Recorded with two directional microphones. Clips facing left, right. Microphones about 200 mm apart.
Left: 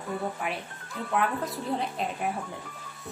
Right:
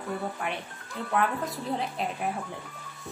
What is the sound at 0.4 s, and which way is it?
Speech, centre (ahead or behind).